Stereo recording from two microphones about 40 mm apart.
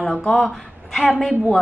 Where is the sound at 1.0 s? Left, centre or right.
Centre.